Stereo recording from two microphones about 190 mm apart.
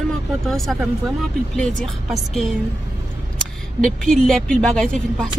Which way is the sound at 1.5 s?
5° left (ahead or behind).